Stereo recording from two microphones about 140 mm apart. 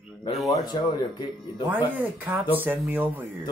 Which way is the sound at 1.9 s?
10° right (ahead or behind).